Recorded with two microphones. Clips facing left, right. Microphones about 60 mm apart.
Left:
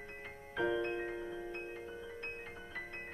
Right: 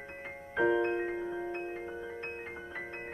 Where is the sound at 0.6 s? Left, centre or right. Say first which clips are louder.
Right 7 dB; right.